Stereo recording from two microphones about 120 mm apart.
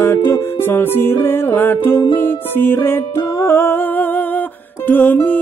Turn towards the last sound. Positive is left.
turn(degrees=15)  # may be behind; listen again after turning